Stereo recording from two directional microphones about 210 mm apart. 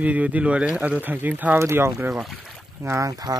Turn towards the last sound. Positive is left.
turn(degrees=-15)  # may be behind; listen again after turning